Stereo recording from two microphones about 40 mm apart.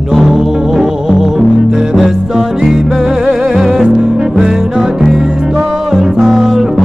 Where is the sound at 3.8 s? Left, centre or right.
Right.